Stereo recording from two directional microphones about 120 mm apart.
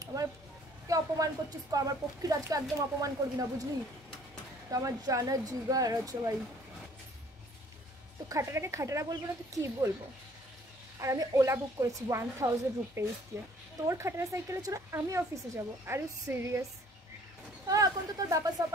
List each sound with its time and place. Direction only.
0.0 s a sound: 30° right (ahead or behind)
0.8 s speech: 30° right (ahead or behind)
4.6 s speech: 30° right (ahead or behind)
8.3 s speech: 25° right (ahead or behind)
11.0 s speech: 30° right (ahead or behind)
17.6 s speech: 30° right (ahead or behind)